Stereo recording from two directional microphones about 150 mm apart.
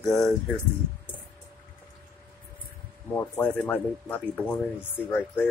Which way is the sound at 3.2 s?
10° left (ahead or behind).